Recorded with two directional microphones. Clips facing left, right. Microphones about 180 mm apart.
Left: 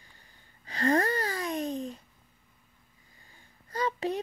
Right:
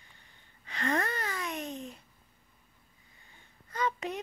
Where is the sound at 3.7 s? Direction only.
30° left (ahead or behind).